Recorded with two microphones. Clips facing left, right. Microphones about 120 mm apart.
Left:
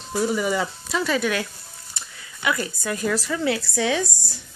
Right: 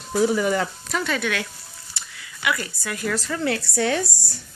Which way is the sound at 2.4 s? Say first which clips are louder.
Left 2 dB; 25° left (ahead or behind).